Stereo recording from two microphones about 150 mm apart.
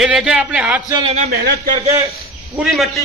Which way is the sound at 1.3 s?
85° right.